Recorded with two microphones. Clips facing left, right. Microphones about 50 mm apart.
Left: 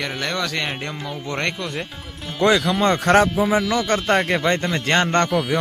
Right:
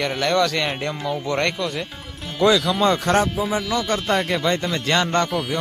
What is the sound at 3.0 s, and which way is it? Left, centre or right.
Speech, left.